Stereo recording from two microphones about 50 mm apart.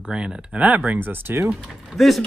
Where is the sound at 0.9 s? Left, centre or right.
Right.